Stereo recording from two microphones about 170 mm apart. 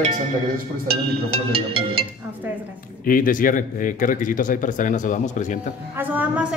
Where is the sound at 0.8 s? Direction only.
70° right (ahead or behind).